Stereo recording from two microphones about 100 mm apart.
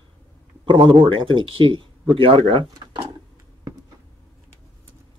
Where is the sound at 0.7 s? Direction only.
55° right (ahead or behind).